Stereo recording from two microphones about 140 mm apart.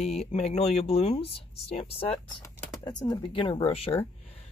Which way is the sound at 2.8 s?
30° left (ahead or behind).